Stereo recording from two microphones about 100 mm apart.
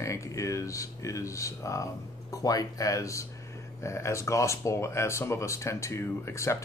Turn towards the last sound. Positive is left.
turn(degrees=30)  # may be behind; listen again after turning